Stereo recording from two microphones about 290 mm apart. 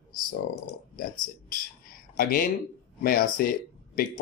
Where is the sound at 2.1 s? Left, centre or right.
Left.